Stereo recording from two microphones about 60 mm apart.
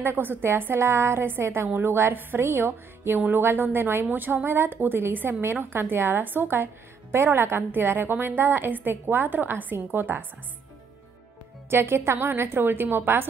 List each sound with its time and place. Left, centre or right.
0.0 s a woman's voice: right
11.7 s a woman's voice: right